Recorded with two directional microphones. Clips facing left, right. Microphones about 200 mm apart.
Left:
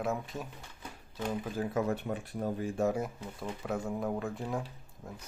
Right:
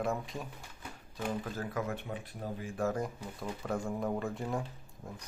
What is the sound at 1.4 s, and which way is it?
Speech, 15° left (ahead or behind).